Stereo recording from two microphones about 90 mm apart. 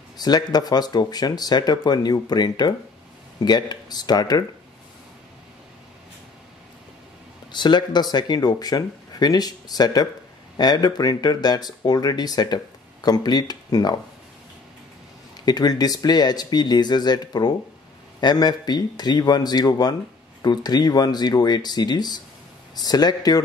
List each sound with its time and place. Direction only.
0.2 s speech: 50° left (ahead or behind)
7.5 s speech: 55° left (ahead or behind)
15.4 s speech: 50° left (ahead or behind)